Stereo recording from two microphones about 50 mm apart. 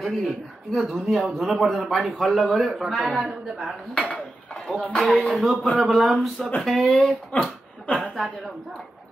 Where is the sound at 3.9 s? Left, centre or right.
Left.